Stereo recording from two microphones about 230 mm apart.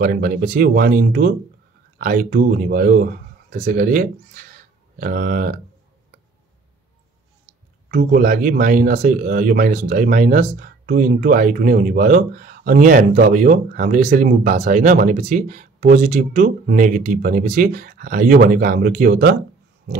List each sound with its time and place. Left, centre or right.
0.0 s speech: right
7.9 s speech: right